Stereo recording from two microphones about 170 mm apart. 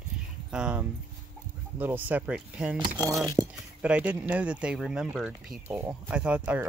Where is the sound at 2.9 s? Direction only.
20° right (ahead or behind).